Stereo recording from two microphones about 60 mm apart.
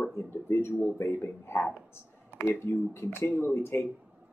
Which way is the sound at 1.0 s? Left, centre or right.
Left.